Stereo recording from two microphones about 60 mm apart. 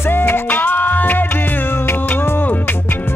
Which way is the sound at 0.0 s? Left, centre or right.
Left.